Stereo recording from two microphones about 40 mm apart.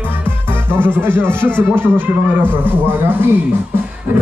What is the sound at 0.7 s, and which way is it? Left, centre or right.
Music, left.